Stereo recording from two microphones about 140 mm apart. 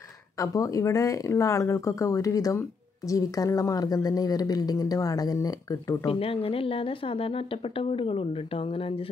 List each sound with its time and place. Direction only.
0.4 s a woman's voice: 25° left (ahead or behind)
6.0 s speech: 40° left (ahead or behind)